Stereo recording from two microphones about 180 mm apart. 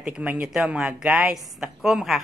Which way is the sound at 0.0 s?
5° right (ahead or behind).